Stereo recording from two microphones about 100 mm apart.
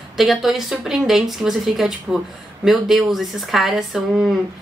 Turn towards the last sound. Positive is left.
turn(degrees=-5)  # may be behind; listen again after turning